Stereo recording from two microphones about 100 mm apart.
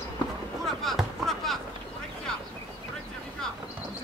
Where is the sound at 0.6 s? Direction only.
Centre (ahead or behind).